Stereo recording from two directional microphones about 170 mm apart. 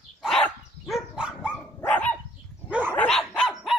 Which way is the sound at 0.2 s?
Centre (ahead or behind).